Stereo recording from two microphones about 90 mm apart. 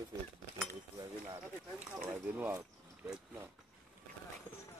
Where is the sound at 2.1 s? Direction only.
20° right (ahead or behind).